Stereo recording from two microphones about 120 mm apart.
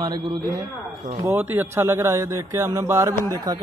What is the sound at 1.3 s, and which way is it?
A man's voice, 15° right (ahead or behind).